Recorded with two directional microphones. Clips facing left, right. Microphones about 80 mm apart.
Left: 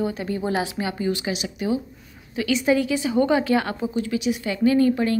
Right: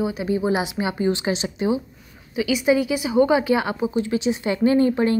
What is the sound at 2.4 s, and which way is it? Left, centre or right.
A woman's voice, centre.